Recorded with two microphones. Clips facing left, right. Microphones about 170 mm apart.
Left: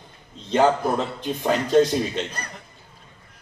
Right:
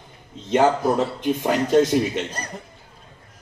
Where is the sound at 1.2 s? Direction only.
20° right (ahead or behind).